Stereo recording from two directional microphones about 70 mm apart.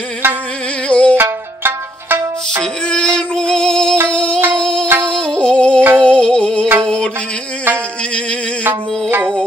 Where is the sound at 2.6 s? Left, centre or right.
Centre.